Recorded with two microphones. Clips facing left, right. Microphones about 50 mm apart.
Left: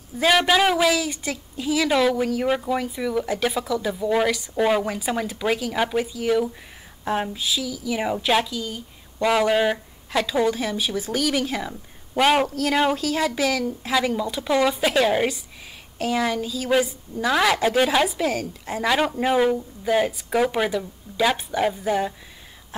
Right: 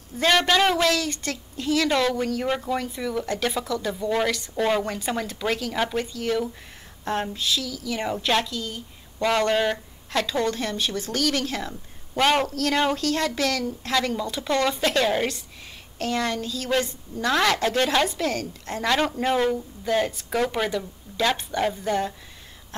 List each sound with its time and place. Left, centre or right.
0.1 s speech: centre